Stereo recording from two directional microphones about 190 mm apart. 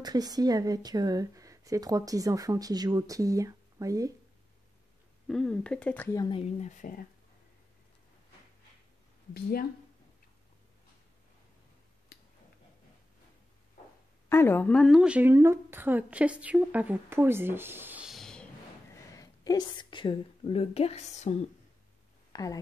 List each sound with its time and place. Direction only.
0.0 s speech: 20° right (ahead or behind)
5.3 s speech: 5° left (ahead or behind)
6.1 s speech: 25° left (ahead or behind); by 7.1 s 45° left (ahead or behind)
9.3 s speech: 55° left (ahead or behind)
14.3 s speech: 10° left (ahead or behind)
19.1 s a woman's voice: 20° left (ahead or behind); by 21.5 s 35° left (ahead or behind)
22.3 s speech: 20° left (ahead or behind)